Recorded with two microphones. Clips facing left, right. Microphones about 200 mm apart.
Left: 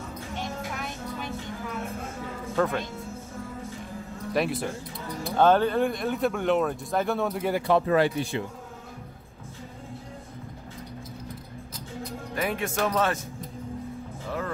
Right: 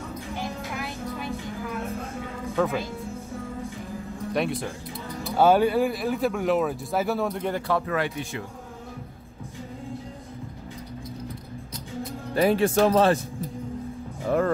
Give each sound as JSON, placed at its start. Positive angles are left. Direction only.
{"t": 0.4, "sound": "music", "side_deg": -5}
{"t": 2.5, "sound": "speech", "side_deg": 0}
{"t": 4.3, "sound": "speech", "side_deg": 0}
{"t": 7.6, "sound": "speech", "side_deg": 25}
{"t": 12.4, "sound": "speech", "side_deg": -35}